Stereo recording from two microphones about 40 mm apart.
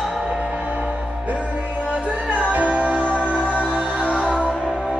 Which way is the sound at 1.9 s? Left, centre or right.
Right.